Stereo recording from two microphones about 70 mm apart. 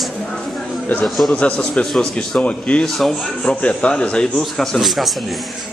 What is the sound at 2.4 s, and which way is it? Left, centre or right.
Speech, centre.